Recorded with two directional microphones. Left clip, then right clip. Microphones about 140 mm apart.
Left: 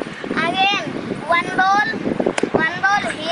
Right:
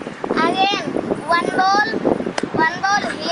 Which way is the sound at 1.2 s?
5° left (ahead or behind).